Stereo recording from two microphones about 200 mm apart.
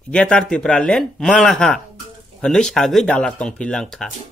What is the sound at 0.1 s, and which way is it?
Speech, 5° left (ahead or behind).